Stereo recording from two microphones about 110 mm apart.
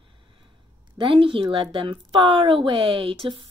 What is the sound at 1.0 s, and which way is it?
Speech, 55° right (ahead or behind).